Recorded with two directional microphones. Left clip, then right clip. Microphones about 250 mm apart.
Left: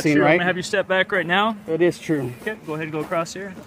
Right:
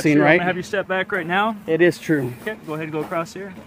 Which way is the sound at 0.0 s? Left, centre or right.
Centre.